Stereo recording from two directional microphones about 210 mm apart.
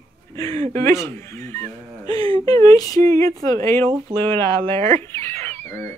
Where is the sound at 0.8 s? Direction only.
15° left (ahead or behind).